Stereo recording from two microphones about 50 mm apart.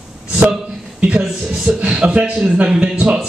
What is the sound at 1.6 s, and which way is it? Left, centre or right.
A man's voice, right.